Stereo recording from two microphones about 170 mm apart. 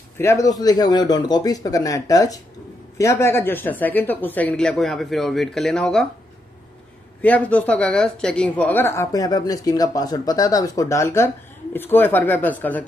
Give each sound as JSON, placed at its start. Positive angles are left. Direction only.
{"t": 0.2, "sound": "speech", "side_deg": 15}
{"t": 7.2, "sound": "speech", "side_deg": 10}